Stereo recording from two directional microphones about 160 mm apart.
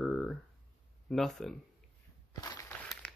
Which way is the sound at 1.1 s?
Centre (ahead or behind).